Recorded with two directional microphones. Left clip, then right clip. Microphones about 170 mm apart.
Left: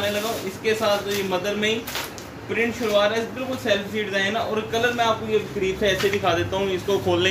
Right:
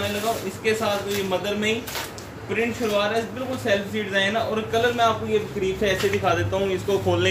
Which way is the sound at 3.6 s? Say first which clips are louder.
Even; centre (ahead or behind).